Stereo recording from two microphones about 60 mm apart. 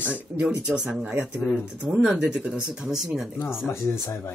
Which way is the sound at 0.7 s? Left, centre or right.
Centre.